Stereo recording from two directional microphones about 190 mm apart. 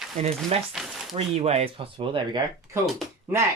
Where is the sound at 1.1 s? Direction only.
30° right (ahead or behind).